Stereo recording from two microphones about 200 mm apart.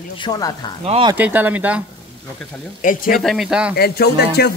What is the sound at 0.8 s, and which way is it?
Speech, 30° right (ahead or behind).